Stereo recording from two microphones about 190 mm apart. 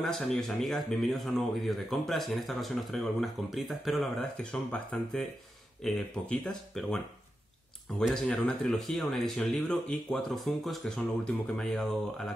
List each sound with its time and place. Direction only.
0.0 s speech: centre (ahead or behind)
8.0 s speech: 5° left (ahead or behind)